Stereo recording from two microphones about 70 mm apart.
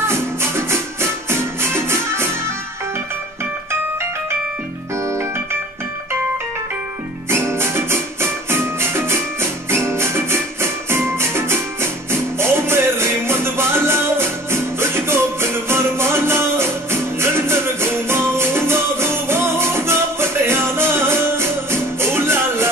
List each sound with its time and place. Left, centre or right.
0.0 s music: right
7.2 s music: right